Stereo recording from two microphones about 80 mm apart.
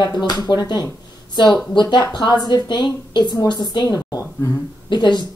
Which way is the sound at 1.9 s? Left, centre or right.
Left.